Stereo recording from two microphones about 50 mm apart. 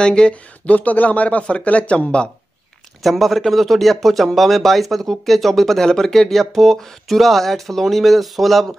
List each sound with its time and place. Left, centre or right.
0.0 s speech: centre
3.0 s speech: centre